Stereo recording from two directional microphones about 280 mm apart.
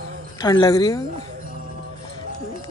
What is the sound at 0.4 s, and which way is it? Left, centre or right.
Speech, centre.